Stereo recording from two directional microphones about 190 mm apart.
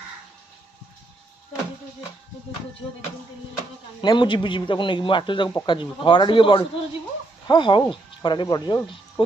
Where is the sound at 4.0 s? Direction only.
25° left (ahead or behind).